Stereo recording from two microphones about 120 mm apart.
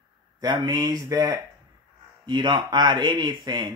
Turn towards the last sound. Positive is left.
turn(degrees=-40)  # may be behind; listen again after turning